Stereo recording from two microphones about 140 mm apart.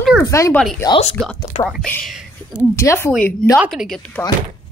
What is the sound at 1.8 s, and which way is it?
Speech, 10° left (ahead or behind).